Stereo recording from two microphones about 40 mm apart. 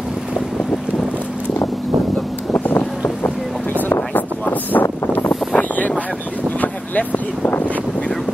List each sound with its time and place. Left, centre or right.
2.6 s boat: left
4.1 s a sound: left
5.0 s wind noise: left
5.6 s boat: left
6.6 s vehicle: left